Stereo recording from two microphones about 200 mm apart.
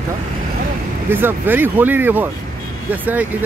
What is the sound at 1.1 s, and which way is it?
Speech, 10° right (ahead or behind).